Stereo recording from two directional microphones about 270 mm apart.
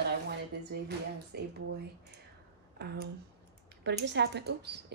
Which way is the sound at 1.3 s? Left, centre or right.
Right.